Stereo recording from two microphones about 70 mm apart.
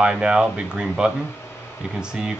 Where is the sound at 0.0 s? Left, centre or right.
Centre.